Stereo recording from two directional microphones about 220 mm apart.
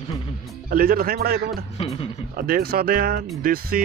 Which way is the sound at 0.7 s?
40° right (ahead or behind).